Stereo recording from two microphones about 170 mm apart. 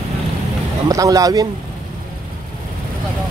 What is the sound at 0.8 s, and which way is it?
Speech, 20° right (ahead or behind).